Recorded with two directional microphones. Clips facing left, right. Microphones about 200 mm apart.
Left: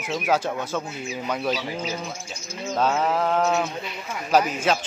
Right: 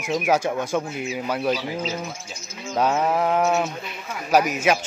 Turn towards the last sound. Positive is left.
turn(degrees=-10)  # may be behind; listen again after turning